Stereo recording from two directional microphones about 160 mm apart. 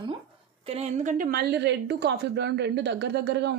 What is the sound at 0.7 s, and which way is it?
A woman's voice, 40° right (ahead or behind).